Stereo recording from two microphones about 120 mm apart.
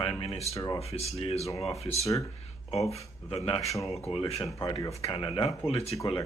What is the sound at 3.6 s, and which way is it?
Speech, 25° left (ahead or behind).